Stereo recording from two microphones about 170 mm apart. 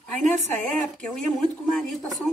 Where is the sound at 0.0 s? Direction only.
5° left (ahead or behind).